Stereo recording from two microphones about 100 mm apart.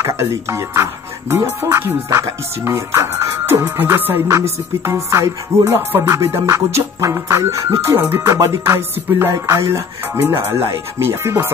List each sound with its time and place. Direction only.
0.0 s music: 30° right (ahead or behind)
7.9 s music: 20° right (ahead or behind)
8.3 s music: 30° right (ahead or behind)